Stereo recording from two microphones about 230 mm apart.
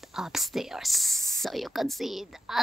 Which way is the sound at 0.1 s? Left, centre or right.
Centre.